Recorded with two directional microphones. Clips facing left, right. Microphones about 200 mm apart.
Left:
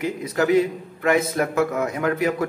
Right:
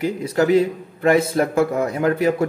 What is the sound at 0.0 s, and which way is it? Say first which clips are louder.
A man's voice: right 3 dB; 30° right (ahead or behind).